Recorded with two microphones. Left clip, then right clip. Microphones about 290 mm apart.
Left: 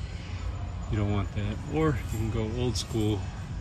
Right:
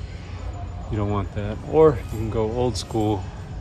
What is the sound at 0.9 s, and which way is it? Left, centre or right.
Speech, centre.